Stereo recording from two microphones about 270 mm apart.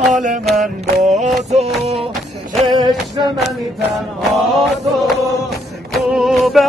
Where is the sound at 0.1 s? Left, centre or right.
Right.